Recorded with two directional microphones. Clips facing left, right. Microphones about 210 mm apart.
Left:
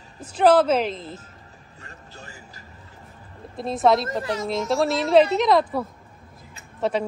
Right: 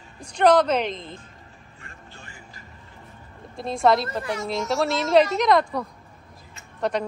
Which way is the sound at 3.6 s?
Centre (ahead or behind).